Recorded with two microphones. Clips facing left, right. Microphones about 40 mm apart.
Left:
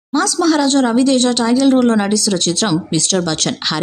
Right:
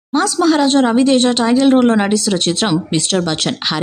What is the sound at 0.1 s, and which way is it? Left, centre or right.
Speech, right.